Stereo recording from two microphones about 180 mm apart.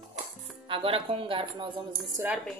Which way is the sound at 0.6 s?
30° right (ahead or behind).